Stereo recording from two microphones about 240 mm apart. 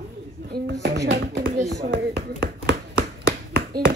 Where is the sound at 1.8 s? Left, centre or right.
Right.